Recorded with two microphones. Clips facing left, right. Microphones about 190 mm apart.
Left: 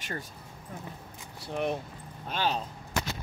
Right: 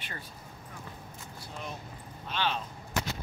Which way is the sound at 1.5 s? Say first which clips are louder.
Left 12 dB; 60° left (ahead or behind).